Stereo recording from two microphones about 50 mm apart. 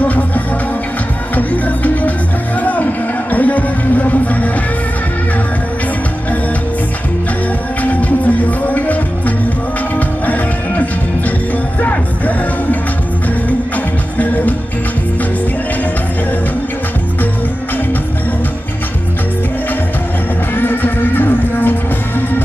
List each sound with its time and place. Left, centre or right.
0.0 s music: left
7.8 s music: left
9.9 s music: left
14.1 s music: left
20.5 s music: left